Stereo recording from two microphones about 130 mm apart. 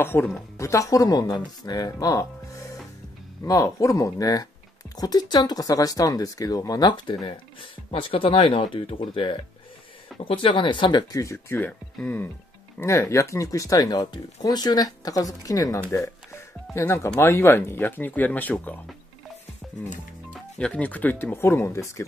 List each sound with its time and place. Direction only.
0.0 s speech: 15° left (ahead or behind)
20.2 s speech: 10° left (ahead or behind)